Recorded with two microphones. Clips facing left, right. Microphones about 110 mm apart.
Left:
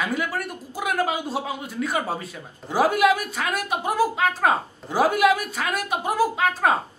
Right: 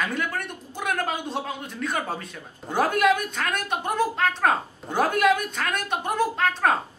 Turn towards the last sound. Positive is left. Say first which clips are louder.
# left 1 dB
turn(degrees=5)  # may be behind; listen again after turning